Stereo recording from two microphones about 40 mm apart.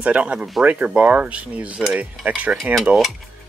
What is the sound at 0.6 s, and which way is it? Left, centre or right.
Speech, right.